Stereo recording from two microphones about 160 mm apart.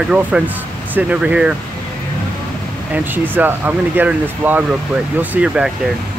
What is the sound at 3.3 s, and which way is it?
Speech, 10° right (ahead or behind).